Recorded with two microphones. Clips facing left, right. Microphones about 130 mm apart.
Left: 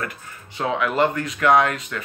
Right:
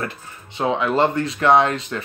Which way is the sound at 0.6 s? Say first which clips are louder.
Right 2 dB; 25° right (ahead or behind).